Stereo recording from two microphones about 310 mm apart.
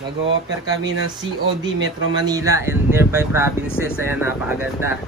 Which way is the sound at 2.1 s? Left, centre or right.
Centre.